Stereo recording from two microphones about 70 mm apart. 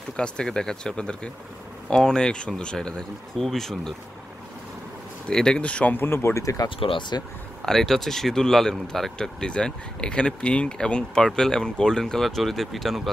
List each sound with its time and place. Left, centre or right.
0.2 s speech: centre
5.3 s speech: centre
5.9 s speech: left
6.4 s speech: left
7.6 s speech: centre